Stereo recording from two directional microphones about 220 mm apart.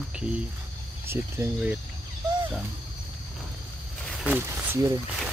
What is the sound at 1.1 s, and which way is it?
Speech, 10° right (ahead or behind).